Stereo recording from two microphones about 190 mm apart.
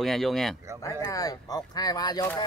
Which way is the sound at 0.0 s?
Centre (ahead or behind).